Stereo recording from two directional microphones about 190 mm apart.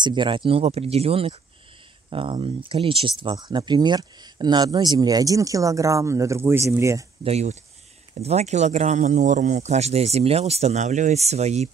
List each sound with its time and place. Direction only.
0.0 s speech: 25° right (ahead or behind)
7.2 s speech: 35° right (ahead or behind)